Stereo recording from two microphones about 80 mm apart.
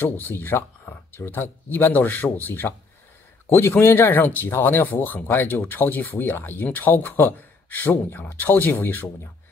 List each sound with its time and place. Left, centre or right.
0.0 s speech: left
3.4 s a man's voice: left